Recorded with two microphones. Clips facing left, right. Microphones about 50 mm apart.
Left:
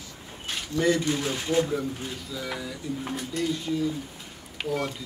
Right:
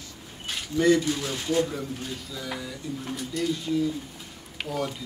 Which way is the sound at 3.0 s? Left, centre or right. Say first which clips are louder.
Left 1 dB; left.